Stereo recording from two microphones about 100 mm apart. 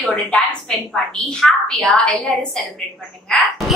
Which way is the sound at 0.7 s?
5° left (ahead or behind).